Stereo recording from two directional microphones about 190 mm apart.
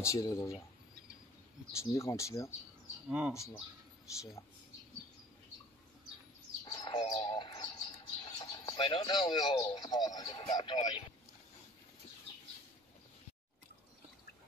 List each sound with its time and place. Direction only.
0.0 s speech: 15° left (ahead or behind)
1.8 s speech: 15° left (ahead or behind)
3.1 s speech: 5° right (ahead or behind)
6.6 s bird: 20° left (ahead or behind)